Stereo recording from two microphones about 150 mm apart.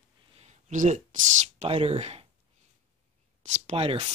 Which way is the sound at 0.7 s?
50° right (ahead or behind).